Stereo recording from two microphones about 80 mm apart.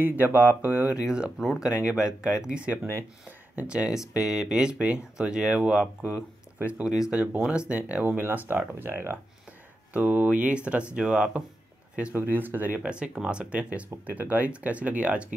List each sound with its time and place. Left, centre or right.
0.0 s speech: right
12.1 s speech: right